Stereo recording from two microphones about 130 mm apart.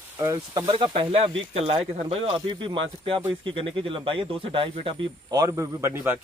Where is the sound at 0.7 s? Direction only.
40° right (ahead or behind).